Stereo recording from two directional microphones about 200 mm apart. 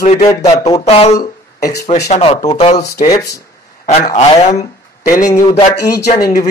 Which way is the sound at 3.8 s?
35° left (ahead or behind).